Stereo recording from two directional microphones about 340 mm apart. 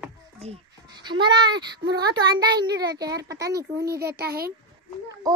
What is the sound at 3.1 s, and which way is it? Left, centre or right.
A child's voice, right.